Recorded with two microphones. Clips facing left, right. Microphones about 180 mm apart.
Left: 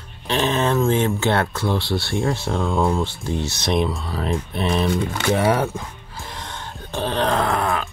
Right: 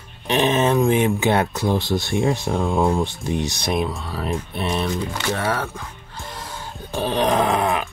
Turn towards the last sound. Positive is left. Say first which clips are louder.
# right 2 dB
turn(degrees=-15)  # may be behind; listen again after turning